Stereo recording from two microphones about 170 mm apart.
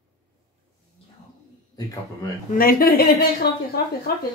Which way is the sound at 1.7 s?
20° left (ahead or behind).